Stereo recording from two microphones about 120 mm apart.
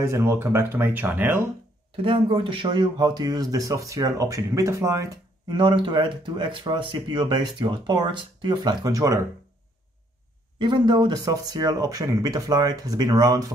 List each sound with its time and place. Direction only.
0.0 s speech: 25° right (ahead or behind)
2.0 s speech: 45° right (ahead or behind); by 5.2 s 25° right (ahead or behind)
5.5 s speech: 40° right (ahead or behind)
10.6 s speech: 40° right (ahead or behind)